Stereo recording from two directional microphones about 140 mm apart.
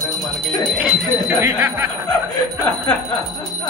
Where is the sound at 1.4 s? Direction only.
20° right (ahead or behind).